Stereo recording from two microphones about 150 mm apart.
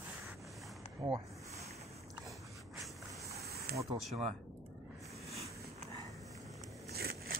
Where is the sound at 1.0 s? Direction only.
30° right (ahead or behind).